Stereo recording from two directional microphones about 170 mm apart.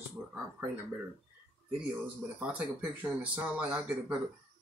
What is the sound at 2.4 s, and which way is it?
Speech, 5° right (ahead or behind).